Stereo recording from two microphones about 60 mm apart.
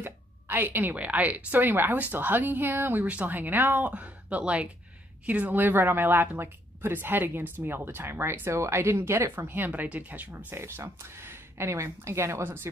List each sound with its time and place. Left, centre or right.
0.0 s a sound: right
0.9 s a woman's voice: right
9.5 s speech: right
10.5 s speech: right